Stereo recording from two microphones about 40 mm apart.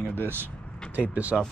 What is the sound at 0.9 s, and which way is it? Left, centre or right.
Speech, right.